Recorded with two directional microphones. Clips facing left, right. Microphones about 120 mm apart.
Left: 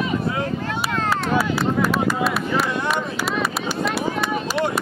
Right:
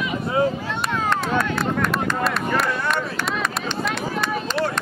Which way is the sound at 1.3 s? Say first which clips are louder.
Left 2 dB; 5° left (ahead or behind).